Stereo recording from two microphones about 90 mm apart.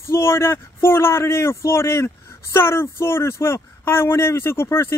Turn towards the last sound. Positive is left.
turn(degrees=30)  # may be behind; listen again after turning